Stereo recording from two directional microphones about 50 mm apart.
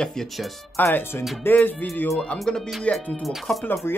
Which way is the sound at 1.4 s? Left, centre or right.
Left.